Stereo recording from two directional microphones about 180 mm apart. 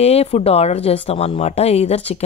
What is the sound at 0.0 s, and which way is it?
A woman's voice, 35° left (ahead or behind).